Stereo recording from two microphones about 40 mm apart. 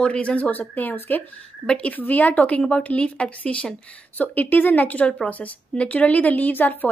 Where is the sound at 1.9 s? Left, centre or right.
Left.